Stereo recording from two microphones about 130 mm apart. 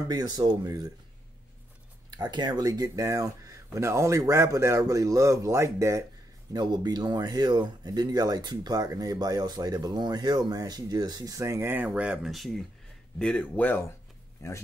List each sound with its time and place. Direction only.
0.1 s speech: 30° right (ahead or behind)
2.0 s speech: 35° right (ahead or behind)
6.5 s speech: 35° right (ahead or behind); by 13.8 s 15° left (ahead or behind)
14.4 s speech: 25° left (ahead or behind)